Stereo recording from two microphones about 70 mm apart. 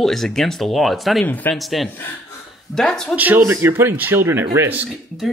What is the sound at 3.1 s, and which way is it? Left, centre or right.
Speech, right.